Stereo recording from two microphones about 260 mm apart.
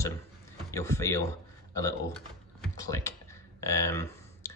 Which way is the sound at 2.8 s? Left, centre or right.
Centre.